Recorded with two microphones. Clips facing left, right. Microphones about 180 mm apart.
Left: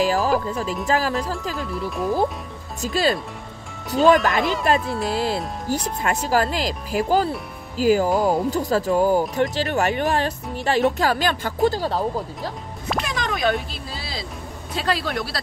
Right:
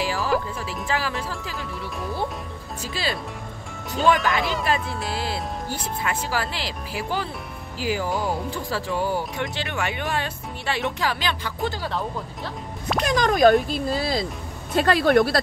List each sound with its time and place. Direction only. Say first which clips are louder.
0.0 s music: left 6 dB; 45° left (ahead or behind)
0.8 s speech: left 4 dB; 40° left (ahead or behind)
1.5 s speech: left 5 dB; centre (ahead or behind)
2.8 s speech: left 8 dB; 45° left (ahead or behind)
3.9 s speech: left 5 dB; centre (ahead or behind)
5.1 s speech: left 4 dB; 40° left (ahead or behind)
13.0 s speech: right 8 dB; 40° right (ahead or behind)